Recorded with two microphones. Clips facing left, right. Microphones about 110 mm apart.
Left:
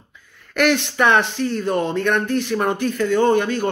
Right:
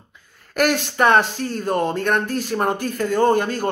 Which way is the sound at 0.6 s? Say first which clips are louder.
Left 1 dB; 40° right (ahead or behind).